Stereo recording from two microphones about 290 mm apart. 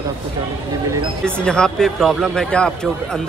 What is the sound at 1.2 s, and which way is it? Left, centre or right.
Speech, centre.